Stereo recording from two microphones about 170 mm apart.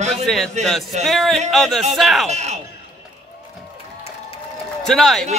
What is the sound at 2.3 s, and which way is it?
Speech, 40° right (ahead or behind).